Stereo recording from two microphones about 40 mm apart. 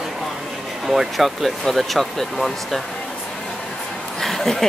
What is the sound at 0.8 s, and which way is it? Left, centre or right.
Speech, centre.